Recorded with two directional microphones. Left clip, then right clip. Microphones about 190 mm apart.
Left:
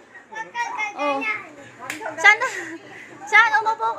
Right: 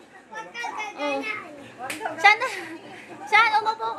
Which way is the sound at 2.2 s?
5° left (ahead or behind).